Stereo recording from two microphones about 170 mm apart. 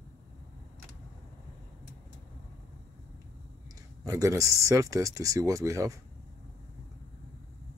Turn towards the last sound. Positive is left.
turn(degrees=-20)  # may be behind; listen again after turning